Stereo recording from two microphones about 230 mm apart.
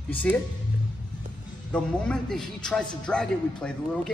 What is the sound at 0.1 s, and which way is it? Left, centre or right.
Speech, centre.